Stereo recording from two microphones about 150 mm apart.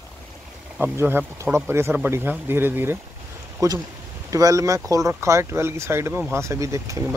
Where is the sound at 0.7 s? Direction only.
10° right (ahead or behind).